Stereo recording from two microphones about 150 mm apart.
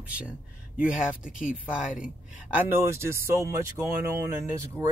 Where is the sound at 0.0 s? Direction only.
10° right (ahead or behind).